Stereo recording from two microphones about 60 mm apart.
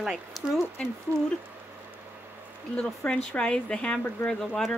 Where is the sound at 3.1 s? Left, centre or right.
Centre.